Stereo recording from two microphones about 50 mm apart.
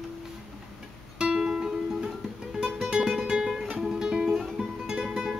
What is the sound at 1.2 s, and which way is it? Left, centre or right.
Music, centre.